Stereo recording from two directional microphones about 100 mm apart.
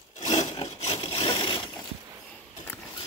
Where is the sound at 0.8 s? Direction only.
85° left; by 1.8 s 50° left (ahead or behind).